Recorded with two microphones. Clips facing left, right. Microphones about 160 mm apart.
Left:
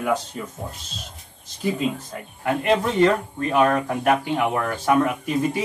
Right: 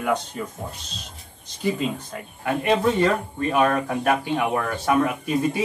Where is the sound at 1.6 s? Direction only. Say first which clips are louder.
Left 1 dB; centre (ahead or behind).